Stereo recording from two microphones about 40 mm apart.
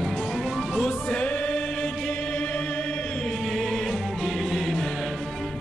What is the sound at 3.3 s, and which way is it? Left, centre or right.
Music, centre.